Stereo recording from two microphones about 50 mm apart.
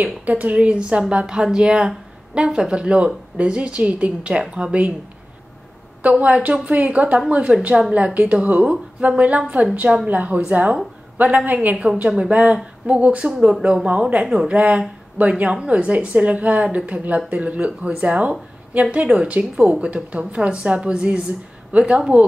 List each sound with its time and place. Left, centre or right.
0.0 s a woman's voice: right; by 4.8 s centre
6.0 s a woman's voice: right
11.7 s a woman's voice: centre
12.2 s a woman's voice: right
14.2 s a woman's voice: centre
14.5 s a woman's voice: right